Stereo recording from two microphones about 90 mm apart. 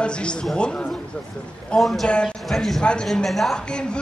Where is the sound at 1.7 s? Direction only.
Centre (ahead or behind).